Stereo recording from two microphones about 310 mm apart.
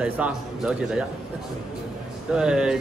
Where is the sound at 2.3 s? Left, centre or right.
Centre.